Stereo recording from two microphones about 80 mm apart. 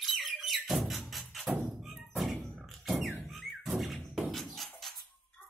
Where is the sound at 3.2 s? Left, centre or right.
Centre.